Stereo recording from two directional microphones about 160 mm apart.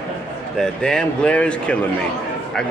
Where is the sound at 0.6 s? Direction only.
5° left (ahead or behind).